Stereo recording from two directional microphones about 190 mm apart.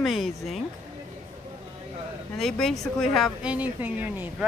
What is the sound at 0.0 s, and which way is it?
Speech, centre (ahead or behind).